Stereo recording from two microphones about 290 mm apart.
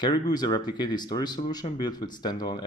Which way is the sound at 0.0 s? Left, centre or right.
Centre.